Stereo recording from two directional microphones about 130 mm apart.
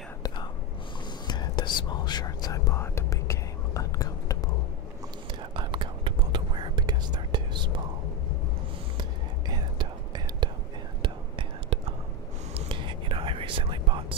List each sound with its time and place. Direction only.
1.2 s whispering: 35° left (ahead or behind)
5.6 s whispering: 40° right (ahead or behind)
9.5 s whispering: 35° right (ahead or behind)